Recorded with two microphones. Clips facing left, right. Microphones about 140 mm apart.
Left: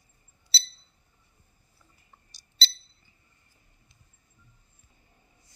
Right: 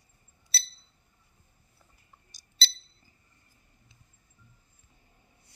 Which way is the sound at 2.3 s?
45° right (ahead or behind).